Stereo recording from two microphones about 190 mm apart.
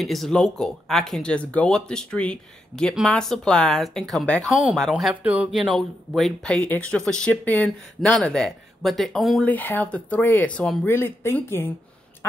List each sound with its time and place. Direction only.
0.0 s speech: centre (ahead or behind)